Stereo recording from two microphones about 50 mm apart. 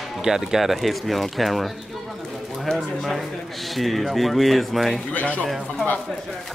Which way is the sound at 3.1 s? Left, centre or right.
Centre.